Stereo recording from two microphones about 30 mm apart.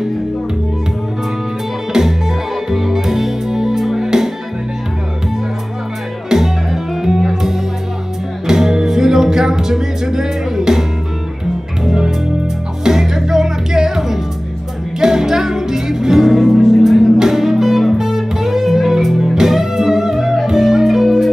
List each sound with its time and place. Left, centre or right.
1.9 s music: centre
6.3 s music: centre
8.5 s music: centre